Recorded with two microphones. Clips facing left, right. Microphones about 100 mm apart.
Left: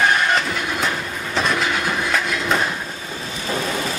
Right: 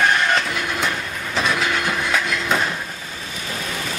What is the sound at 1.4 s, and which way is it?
Train, centre (ahead or behind).